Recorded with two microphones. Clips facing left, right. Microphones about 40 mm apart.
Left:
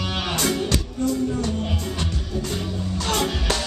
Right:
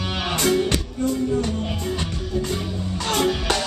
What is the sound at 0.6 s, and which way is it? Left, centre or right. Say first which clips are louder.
Music: even; right.